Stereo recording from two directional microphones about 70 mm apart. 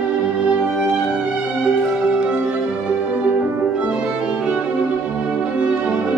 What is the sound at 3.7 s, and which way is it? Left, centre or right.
Music, centre.